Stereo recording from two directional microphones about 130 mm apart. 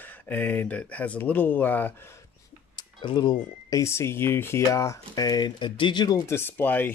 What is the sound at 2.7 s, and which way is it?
Speech, 35° left (ahead or behind).